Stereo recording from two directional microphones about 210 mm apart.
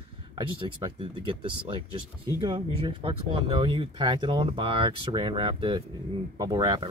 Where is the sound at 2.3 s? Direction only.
20° right (ahead or behind).